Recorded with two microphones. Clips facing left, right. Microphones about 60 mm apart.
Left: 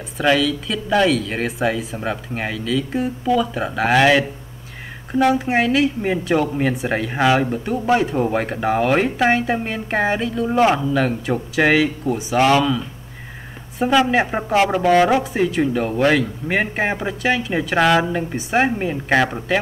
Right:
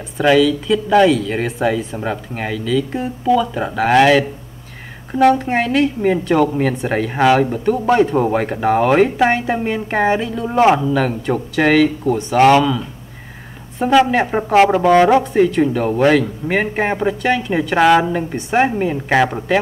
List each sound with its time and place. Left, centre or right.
0.2 s speech: centre
12.4 s speech: right
13.7 s speech: centre